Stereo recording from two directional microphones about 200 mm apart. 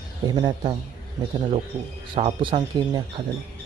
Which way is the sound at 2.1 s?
25° right (ahead or behind).